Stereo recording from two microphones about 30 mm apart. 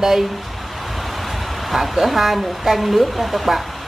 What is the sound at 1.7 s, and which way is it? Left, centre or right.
Speech, centre.